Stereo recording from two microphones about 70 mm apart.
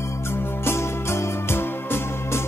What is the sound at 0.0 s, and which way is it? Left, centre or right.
Music, left.